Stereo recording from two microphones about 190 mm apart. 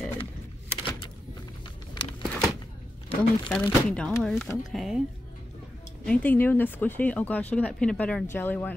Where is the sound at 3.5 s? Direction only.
5° left (ahead or behind).